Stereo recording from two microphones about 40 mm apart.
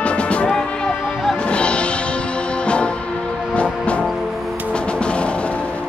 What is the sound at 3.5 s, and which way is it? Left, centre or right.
Music, left.